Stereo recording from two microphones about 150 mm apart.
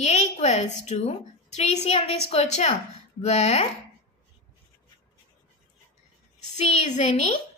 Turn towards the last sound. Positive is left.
turn(degrees=45)  # may be behind; listen again after turning